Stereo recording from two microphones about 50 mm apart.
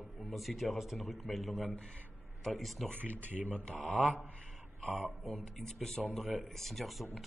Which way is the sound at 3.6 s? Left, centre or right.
Centre.